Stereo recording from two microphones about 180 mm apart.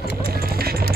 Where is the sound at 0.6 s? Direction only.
60° right (ahead or behind).